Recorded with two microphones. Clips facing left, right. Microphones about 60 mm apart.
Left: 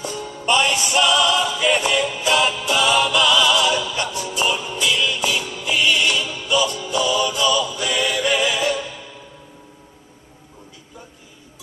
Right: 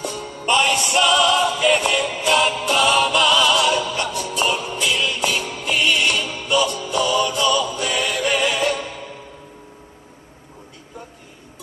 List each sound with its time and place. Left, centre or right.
0.2 s music: right
1.0 s music: right